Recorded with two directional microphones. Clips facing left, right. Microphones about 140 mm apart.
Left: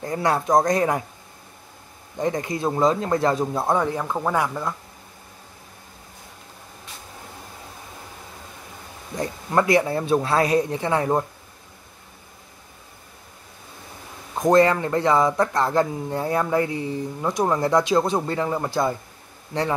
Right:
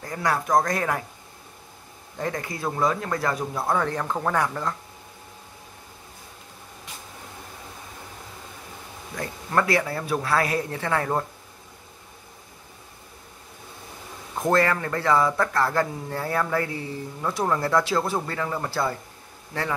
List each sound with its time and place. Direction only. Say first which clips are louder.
0.0 s speech: left 4 dB; 25° left (ahead or behind)
2.1 s speech: left 5 dB; 20° left (ahead or behind)
9.1 s speech: left 3 dB; 20° left (ahead or behind)
14.3 s speech: left 5 dB; 20° left (ahead or behind)